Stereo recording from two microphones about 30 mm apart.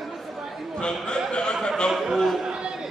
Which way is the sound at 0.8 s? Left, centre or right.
Left.